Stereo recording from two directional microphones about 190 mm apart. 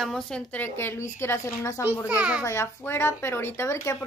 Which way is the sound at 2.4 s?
15° left (ahead or behind).